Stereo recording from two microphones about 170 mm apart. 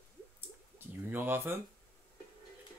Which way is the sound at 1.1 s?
10° right (ahead or behind).